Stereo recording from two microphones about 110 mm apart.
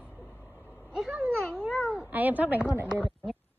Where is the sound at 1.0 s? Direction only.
15° right (ahead or behind).